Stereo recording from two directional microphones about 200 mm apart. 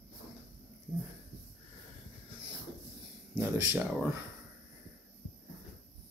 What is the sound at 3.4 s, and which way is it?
Speech, 10° right (ahead or behind).